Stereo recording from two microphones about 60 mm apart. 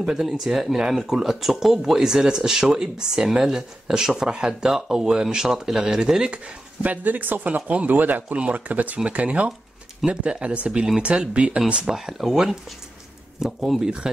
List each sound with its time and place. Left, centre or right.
0.0 s speech: centre
6.8 s speech: right
11.8 s speech: centre